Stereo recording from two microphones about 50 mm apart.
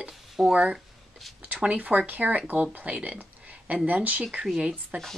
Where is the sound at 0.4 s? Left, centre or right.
Right.